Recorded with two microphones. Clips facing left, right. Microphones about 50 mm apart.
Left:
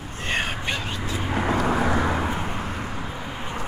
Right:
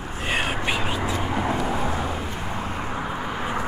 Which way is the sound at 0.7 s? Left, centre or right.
Centre.